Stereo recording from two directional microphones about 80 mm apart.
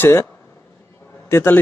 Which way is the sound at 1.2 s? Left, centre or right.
Left.